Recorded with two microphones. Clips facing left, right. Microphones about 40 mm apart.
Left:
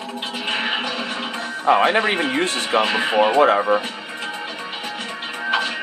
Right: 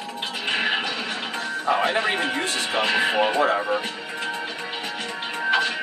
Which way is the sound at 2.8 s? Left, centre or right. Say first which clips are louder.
Left 2 dB; centre.